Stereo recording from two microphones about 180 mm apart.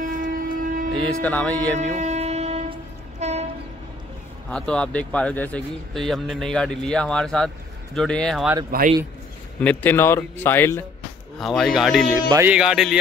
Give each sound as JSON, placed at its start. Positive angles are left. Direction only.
{"t": 0.0, "sound": "train", "side_deg": -45}
{"t": 1.2, "sound": "a man's voice", "side_deg": 10}
{"t": 1.8, "sound": "a sound", "side_deg": -40}
{"t": 3.2, "sound": "train", "side_deg": -40}
{"t": 4.5, "sound": "speech", "side_deg": 5}
{"t": 8.7, "sound": "a man's voice", "side_deg": -55}
{"t": 9.6, "sound": "a man's voice", "side_deg": 10}
{"t": 11.3, "sound": "speech", "side_deg": 0}
{"t": 12.3, "sound": "music", "side_deg": -15}
{"t": 12.5, "sound": "speech", "side_deg": -5}